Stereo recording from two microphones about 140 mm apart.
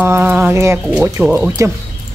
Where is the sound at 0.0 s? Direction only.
15° right (ahead or behind).